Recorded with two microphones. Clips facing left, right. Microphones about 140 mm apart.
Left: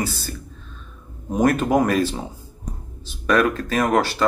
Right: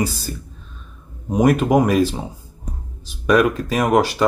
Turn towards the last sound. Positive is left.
turn(degrees=-10)  # may be behind; listen again after turning